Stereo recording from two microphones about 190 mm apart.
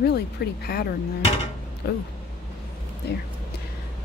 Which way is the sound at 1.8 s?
60° left (ahead or behind).